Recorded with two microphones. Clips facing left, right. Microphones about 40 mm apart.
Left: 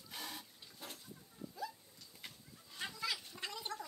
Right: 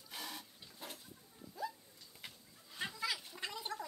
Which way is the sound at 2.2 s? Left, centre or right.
Centre.